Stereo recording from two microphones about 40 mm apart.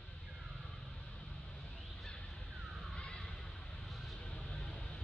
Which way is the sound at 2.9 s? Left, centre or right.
Left.